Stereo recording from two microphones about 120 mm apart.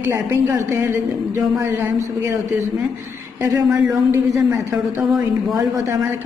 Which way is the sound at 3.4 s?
25° right (ahead or behind).